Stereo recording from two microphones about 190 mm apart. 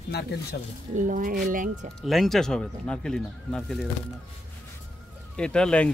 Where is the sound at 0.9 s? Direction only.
40° right (ahead or behind).